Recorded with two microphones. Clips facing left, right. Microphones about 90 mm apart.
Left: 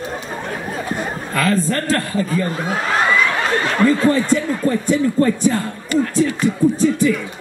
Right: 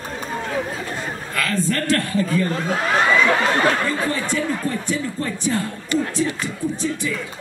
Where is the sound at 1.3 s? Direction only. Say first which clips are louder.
Left 4 dB; 35° left (ahead or behind).